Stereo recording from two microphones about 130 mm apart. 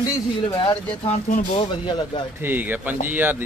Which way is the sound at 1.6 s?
35° left (ahead or behind).